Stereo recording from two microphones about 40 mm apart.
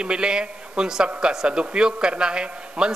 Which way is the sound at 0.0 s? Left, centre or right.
Right.